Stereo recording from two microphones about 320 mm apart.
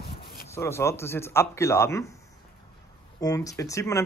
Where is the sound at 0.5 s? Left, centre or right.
Centre.